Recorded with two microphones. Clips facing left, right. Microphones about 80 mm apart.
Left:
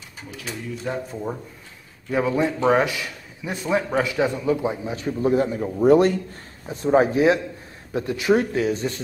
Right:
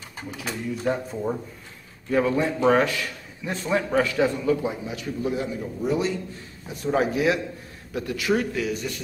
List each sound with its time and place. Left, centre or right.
0.8 s speech: centre
2.0 s a man's voice: centre; by 6.1 s left
6.7 s a man's voice: left